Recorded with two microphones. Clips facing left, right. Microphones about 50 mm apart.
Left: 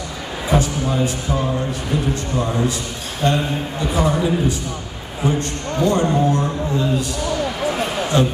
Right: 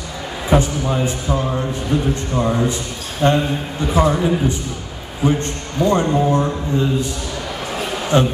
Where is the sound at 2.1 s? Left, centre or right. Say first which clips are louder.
Right 2 dB; right.